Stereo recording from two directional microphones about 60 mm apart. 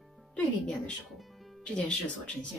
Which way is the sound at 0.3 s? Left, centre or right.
Centre.